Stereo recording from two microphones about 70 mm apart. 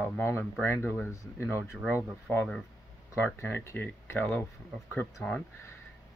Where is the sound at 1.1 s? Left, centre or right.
Left.